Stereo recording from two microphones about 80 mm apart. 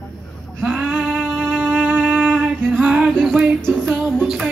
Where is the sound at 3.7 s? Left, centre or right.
Centre.